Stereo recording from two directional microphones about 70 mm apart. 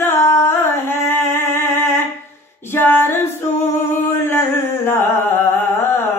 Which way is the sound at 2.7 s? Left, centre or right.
Left.